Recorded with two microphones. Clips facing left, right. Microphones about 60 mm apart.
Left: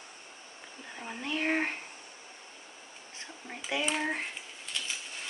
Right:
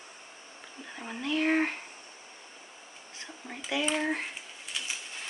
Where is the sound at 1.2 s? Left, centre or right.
Centre.